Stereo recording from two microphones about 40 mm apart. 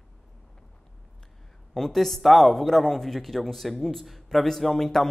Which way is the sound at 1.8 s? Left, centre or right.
Centre.